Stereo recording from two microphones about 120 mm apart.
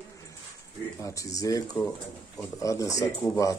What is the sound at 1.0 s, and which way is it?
Speech, 30° left (ahead or behind).